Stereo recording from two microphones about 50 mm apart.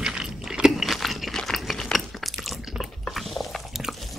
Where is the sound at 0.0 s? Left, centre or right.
Centre.